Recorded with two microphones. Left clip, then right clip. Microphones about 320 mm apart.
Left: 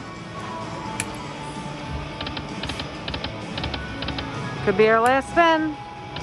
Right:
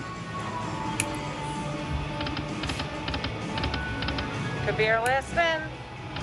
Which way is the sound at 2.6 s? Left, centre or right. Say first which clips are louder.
Left 2 dB; centre.